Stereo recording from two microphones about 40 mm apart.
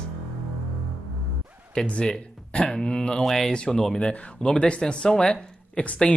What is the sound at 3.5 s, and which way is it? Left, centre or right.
Speech, left.